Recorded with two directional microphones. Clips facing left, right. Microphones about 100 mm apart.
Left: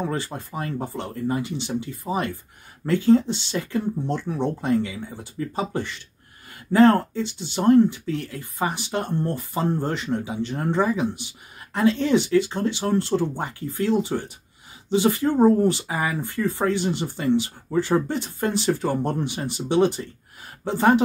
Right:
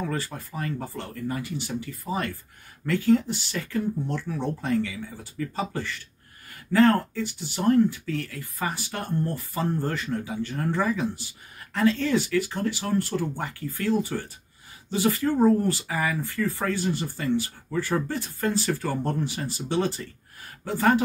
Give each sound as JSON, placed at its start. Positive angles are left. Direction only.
{"t": 0.0, "sound": "speech", "side_deg": 20}